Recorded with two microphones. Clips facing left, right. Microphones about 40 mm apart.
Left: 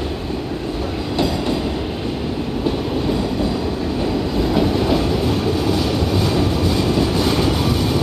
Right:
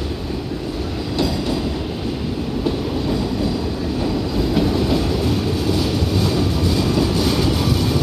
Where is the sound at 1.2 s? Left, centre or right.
Centre.